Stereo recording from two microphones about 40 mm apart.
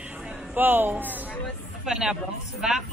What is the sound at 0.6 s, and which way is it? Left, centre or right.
Speech, right.